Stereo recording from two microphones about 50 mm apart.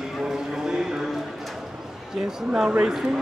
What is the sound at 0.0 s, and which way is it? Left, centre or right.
Clip-clop, centre.